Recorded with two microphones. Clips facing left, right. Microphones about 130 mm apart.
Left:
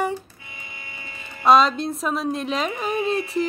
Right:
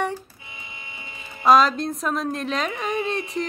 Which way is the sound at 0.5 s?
25° right (ahead or behind).